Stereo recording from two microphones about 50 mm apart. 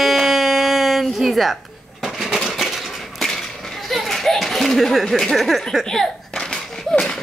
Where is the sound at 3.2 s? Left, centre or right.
Centre.